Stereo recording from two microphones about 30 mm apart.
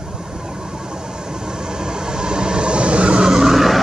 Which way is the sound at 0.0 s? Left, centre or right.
Right.